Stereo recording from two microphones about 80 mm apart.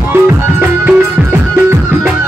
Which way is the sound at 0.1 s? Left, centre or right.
Right.